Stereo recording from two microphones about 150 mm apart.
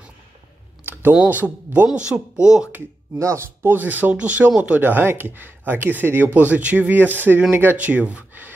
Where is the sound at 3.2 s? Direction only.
20° right (ahead or behind).